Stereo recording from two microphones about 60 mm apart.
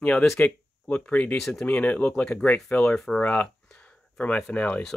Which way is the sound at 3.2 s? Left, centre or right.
Left.